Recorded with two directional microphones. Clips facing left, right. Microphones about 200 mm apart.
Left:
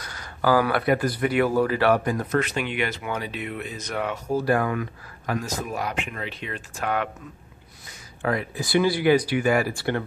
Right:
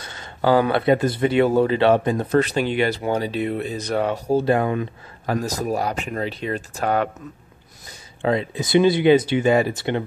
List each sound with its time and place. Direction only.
0.0 s speech: 25° right (ahead or behind)
8.2 s speech: 25° right (ahead or behind)